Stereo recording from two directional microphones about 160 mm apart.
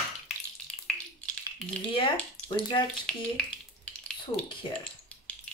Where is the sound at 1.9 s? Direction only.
35° left (ahead or behind).